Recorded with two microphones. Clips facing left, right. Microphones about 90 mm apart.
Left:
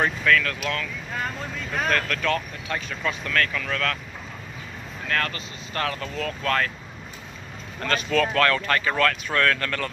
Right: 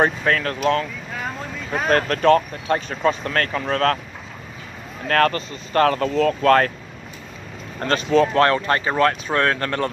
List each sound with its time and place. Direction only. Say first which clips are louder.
0.0 s speech: right 3 dB; 35° right (ahead or behind)
1.9 s speech: right 10 dB; 35° right (ahead or behind)
5.0 s speech: right 9 dB; 45° right (ahead or behind)
7.8 s speech: right 6 dB; 30° right (ahead or behind)